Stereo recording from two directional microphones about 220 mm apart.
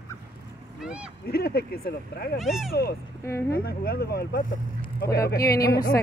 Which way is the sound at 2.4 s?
Centre (ahead or behind).